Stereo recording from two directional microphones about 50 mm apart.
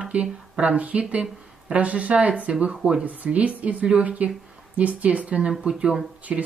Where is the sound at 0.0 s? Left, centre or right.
Right.